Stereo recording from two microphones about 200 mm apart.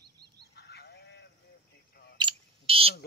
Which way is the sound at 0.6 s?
55° left (ahead or behind).